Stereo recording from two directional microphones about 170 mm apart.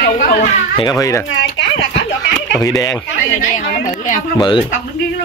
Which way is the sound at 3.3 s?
50° left (ahead or behind).